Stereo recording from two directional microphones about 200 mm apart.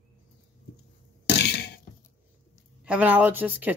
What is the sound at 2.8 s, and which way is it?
Speech, 5° right (ahead or behind).